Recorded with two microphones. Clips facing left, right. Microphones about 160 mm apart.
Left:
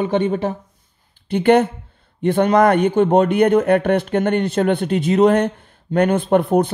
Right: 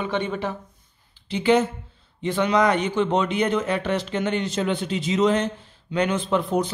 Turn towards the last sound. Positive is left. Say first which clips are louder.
# left 7 dB
turn(degrees=55)  # may be behind; listen again after turning